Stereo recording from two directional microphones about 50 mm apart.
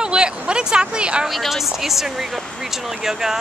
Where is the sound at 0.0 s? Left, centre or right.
Centre.